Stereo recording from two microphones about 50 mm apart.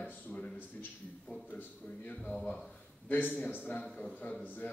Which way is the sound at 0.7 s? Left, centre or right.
Left.